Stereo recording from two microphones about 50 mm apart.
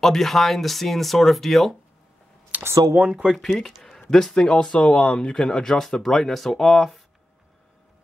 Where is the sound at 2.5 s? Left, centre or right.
Right.